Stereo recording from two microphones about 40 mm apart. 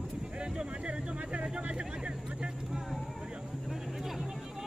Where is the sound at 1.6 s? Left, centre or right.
Right.